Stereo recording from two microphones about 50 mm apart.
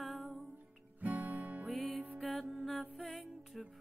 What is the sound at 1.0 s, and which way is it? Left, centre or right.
Music, right.